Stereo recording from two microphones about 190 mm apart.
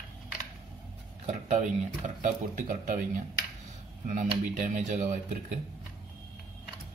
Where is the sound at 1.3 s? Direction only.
40° right (ahead or behind).